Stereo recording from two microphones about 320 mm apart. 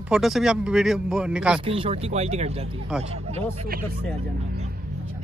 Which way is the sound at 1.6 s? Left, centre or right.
Centre.